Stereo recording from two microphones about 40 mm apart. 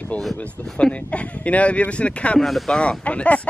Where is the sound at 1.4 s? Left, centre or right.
Left.